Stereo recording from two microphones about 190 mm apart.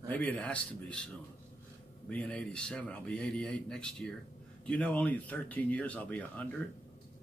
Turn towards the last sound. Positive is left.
turn(degrees=10)  # may be behind; listen again after turning